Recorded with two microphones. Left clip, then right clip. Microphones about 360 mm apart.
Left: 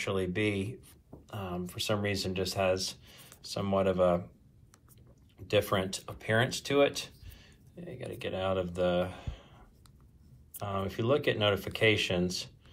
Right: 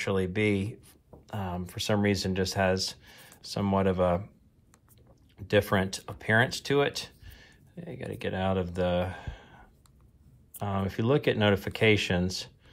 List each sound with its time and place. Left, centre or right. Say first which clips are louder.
0.0 s speech: right 3 dB; centre
5.5 s speech: right 3 dB; centre
10.7 s speech: right 2 dB; centre